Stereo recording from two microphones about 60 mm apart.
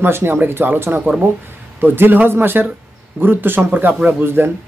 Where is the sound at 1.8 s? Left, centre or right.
Right.